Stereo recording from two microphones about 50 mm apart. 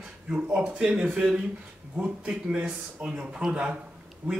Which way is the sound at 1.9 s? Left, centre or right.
Right.